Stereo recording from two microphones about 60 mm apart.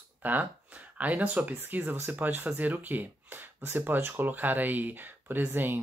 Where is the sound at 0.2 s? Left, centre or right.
Right.